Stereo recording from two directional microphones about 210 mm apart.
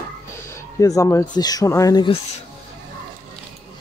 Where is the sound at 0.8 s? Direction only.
15° left (ahead or behind).